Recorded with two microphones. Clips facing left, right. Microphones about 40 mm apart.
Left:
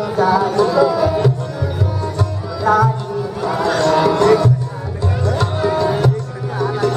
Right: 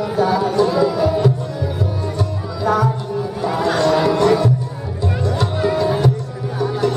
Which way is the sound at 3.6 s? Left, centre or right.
Centre.